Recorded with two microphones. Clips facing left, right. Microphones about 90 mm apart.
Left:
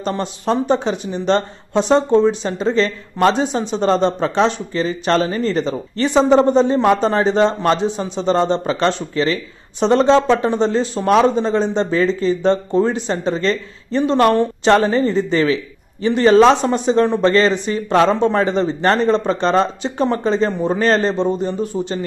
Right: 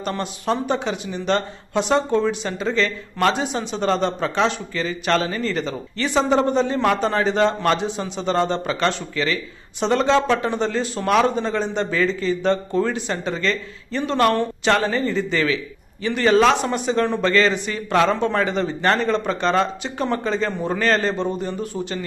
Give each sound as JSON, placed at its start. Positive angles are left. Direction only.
{"t": 0.0, "sound": "speech", "side_deg": 30}